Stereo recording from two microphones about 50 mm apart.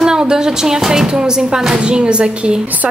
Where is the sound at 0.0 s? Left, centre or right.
Centre.